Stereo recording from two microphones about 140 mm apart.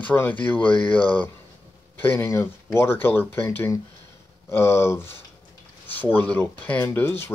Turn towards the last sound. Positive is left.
turn(degrees=15)  # may be behind; listen again after turning